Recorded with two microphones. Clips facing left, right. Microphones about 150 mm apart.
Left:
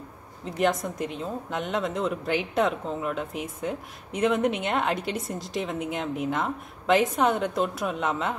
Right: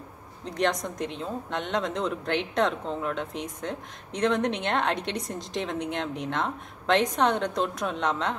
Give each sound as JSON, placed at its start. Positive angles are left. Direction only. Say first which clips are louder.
{"t": 0.5, "sound": "a woman's voice", "louder": "left 2 dB", "side_deg": 5}